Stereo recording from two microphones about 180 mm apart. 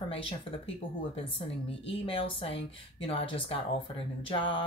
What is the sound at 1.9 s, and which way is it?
Speech, 30° left (ahead or behind).